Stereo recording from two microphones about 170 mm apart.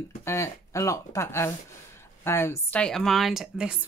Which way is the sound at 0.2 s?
15° left (ahead or behind).